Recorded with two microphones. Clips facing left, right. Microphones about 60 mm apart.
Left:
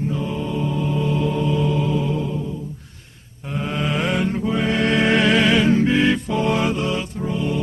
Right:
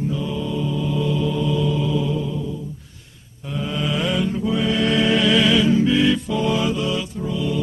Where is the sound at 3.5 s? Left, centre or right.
Left.